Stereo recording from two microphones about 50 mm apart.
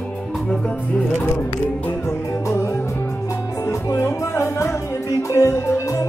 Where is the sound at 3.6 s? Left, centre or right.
Left.